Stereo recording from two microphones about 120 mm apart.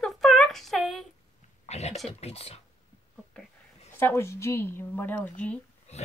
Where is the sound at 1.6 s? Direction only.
65° left (ahead or behind).